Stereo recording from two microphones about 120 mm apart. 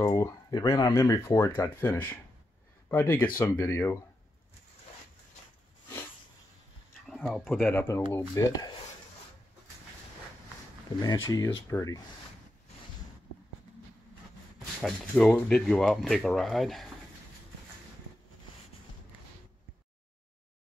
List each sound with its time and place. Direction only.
0.0 s speech: 30° left (ahead or behind)
7.1 s speech: centre (ahead or behind)
8.1 s speech: 30° left (ahead or behind)
11.0 s speech: 30° left (ahead or behind)
14.8 s speech: 5° left (ahead or behind)